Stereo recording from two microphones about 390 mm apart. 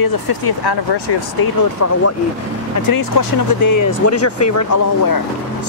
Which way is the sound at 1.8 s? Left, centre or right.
Left.